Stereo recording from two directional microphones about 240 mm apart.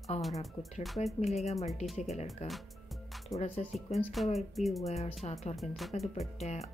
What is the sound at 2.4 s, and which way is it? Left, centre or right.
Speech, left.